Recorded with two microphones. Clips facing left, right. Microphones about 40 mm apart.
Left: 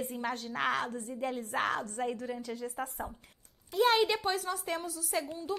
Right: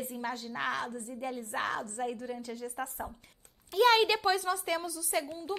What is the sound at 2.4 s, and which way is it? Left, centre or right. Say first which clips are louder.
Speech: left 1 dB; left.